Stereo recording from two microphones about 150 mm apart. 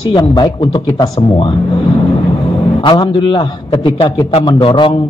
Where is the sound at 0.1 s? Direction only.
25° left (ahead or behind).